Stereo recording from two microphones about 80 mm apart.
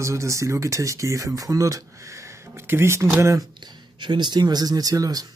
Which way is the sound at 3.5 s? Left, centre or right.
Right.